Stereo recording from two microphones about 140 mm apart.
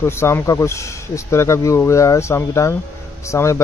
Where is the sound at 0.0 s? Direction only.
20° left (ahead or behind).